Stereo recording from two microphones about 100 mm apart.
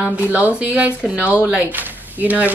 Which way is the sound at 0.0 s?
15° right (ahead or behind).